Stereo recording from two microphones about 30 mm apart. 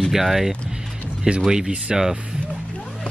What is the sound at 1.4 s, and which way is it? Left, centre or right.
Speech, right.